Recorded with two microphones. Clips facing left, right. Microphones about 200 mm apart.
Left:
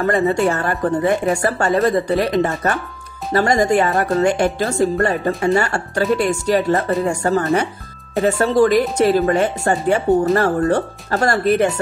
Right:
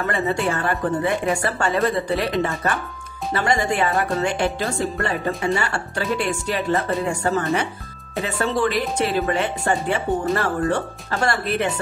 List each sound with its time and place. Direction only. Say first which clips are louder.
0.0 s speech: left 6 dB; 40° left (ahead or behind)